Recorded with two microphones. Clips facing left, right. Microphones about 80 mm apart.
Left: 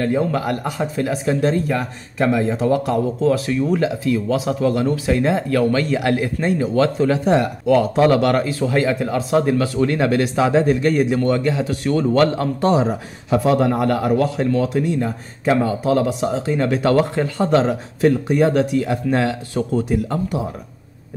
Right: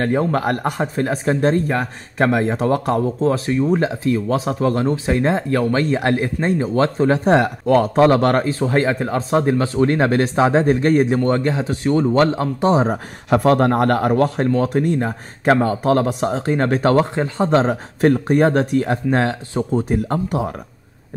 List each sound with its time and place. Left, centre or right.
0.0 s speech: right
7.2 s a man's voice: right
12.8 s a man's voice: right